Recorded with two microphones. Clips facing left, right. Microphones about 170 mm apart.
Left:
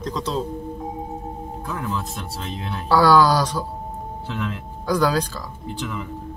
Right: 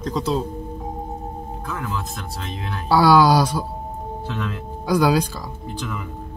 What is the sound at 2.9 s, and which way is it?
Speech, 15° right (ahead or behind).